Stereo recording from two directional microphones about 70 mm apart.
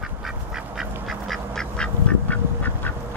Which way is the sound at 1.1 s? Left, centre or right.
Centre.